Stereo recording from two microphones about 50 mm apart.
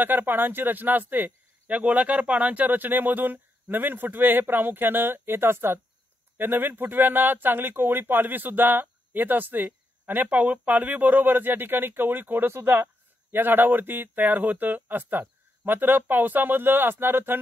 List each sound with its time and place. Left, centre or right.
0.0 s speech: right